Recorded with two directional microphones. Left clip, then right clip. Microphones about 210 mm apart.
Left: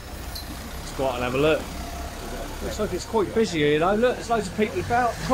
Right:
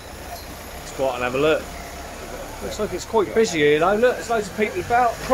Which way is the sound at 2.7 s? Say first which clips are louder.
Right 3 dB; 10° right (ahead or behind).